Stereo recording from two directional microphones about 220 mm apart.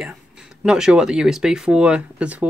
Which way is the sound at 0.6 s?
5° right (ahead or behind).